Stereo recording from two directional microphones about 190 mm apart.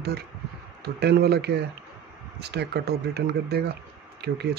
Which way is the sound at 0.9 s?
60° right (ahead or behind).